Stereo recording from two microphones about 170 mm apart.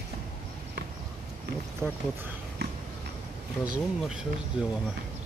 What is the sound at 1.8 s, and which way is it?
Speech, 10° right (ahead or behind).